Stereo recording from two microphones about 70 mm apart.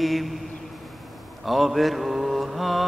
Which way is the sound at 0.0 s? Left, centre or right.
Centre.